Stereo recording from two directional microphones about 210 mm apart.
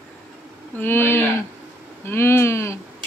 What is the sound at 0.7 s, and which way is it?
Speech, 10° left (ahead or behind).